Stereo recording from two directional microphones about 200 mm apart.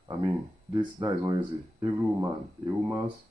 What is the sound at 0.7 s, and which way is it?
Speech, 20° right (ahead or behind).